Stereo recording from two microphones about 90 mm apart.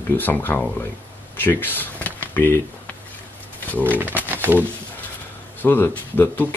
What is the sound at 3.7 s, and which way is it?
Speech, 20° left (ahead or behind).